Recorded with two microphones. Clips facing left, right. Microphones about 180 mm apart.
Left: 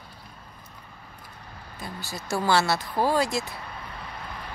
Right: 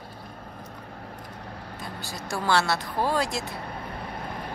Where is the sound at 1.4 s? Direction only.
70° right (ahead or behind).